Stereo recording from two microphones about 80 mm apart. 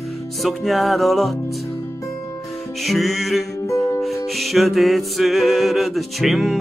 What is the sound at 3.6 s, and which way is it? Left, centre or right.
Music, left.